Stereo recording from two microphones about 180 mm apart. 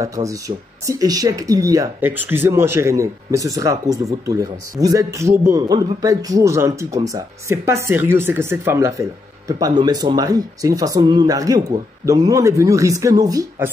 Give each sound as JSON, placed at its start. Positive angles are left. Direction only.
{"t": 0.0, "sound": "speech", "side_deg": -20}